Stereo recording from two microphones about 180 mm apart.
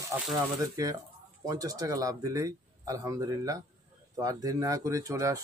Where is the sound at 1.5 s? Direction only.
20° right (ahead or behind).